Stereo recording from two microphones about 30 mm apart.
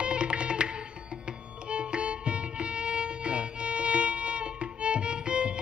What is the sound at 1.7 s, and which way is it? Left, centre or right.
Music, right.